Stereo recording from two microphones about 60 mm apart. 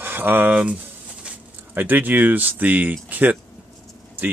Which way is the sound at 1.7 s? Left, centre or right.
Right.